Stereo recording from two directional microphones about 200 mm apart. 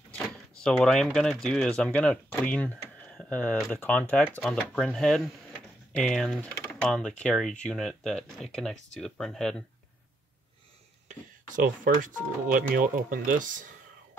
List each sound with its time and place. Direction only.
0.7 s speech: 5° left (ahead or behind)
11.1 s speech: 40° right (ahead or behind)